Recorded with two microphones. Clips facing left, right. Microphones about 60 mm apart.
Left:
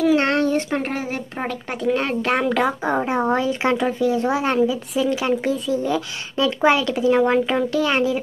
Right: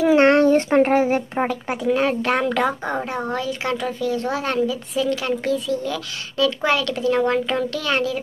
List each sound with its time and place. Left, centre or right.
0.0 s speech: right
1.4 s a child's voice: centre
3.1 s speech: left